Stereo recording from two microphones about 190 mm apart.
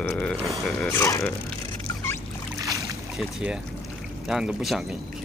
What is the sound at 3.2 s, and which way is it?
Speech, 5° right (ahead or behind).